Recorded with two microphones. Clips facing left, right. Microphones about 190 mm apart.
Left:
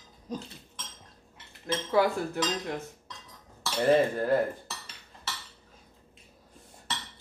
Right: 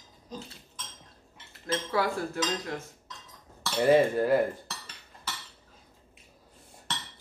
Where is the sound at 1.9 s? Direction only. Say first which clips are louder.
Left 5 dB; 20° left (ahead or behind).